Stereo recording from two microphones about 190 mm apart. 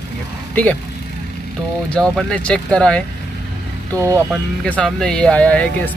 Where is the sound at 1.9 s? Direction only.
5° left (ahead or behind).